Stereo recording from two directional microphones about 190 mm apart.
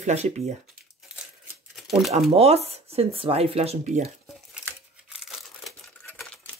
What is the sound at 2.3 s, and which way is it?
Speech, 35° right (ahead or behind).